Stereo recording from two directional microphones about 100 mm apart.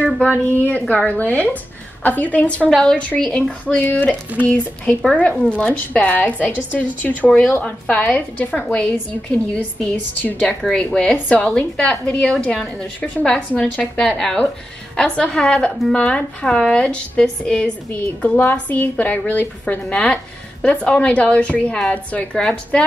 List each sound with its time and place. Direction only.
0.0 s a woman's voice: 15° left (ahead or behind)
10.6 s a woman's voice: 5° left (ahead or behind)